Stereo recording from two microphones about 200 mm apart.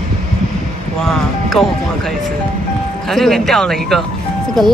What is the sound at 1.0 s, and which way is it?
Speech, centre (ahead or behind).